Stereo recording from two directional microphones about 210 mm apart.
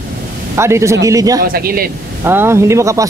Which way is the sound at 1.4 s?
45° right (ahead or behind).